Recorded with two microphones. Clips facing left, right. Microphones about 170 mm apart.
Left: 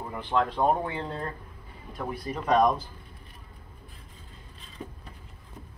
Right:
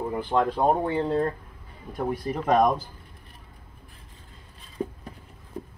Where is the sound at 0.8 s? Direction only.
40° right (ahead or behind).